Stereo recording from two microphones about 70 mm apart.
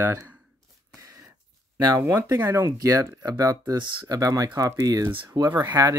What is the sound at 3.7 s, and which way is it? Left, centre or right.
Speech, right.